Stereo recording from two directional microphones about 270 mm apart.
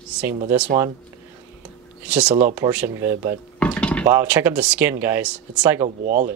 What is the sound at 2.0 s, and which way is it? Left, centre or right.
Speech, centre.